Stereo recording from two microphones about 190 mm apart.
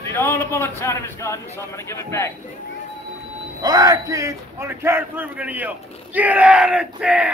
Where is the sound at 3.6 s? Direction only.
20° right (ahead or behind).